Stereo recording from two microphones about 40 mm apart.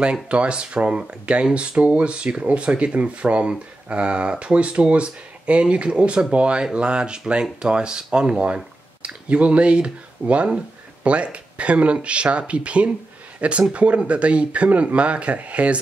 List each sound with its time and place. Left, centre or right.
0.0 s speech: right